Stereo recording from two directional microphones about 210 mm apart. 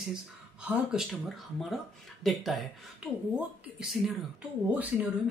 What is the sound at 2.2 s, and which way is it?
Speech, centre (ahead or behind).